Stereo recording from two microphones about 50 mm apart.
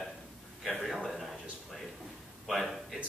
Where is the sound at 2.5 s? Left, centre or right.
Centre.